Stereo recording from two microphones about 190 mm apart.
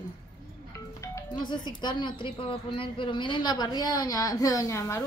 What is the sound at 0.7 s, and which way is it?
Doorbell, 15° left (ahead or behind).